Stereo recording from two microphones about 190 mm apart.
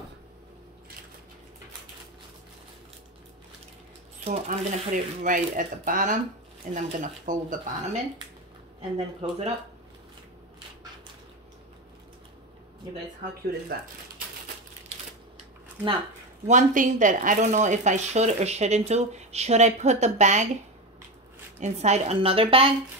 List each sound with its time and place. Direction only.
4.2 s speech: 40° right (ahead or behind)
13.7 s speech: 50° right (ahead or behind)
16.4 s speech: 40° right (ahead or behind)
21.5 s speech: 35° right (ahead or behind)